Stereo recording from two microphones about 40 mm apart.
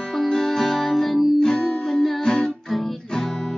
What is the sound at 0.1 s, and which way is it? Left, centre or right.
Music, centre.